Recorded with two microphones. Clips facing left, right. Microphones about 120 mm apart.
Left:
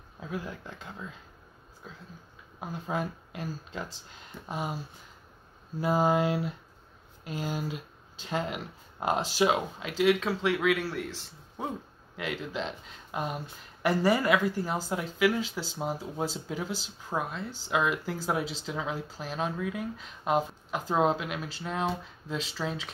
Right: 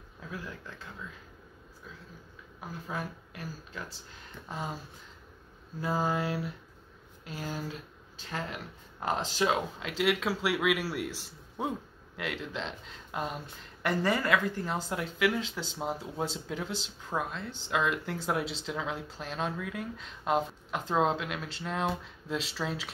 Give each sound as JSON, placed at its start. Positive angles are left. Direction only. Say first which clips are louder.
{"t": 0.2, "sound": "speech", "louder": "left 5 dB", "side_deg": 20}
{"t": 2.6, "sound": "speech", "louder": "left 5 dB", "side_deg": 20}
{"t": 5.8, "sound": "speech", "louder": "left 5 dB", "side_deg": 15}